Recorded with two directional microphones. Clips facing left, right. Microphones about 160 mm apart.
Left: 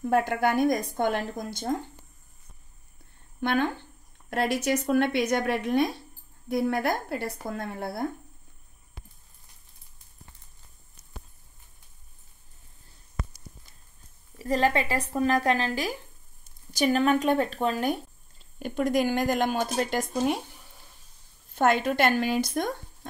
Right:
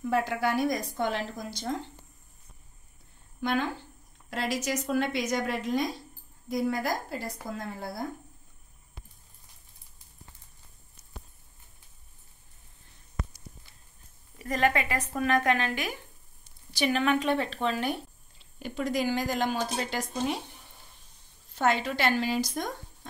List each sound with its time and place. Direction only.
0.0 s speech: 50° left (ahead or behind)
3.3 s speech: 55° left (ahead or behind)
14.4 s speech: 30° left (ahead or behind); by 20.4 s 50° left (ahead or behind)
21.5 s speech: 50° left (ahead or behind)